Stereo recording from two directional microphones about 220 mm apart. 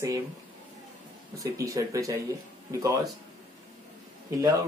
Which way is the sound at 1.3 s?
15° right (ahead or behind).